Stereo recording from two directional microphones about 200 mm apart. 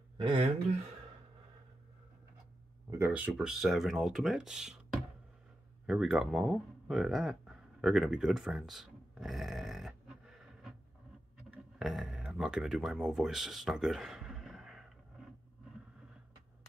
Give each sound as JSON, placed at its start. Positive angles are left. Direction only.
{"t": 0.2, "sound": "speech", "side_deg": -25}
{"t": 2.9, "sound": "speech", "side_deg": -10}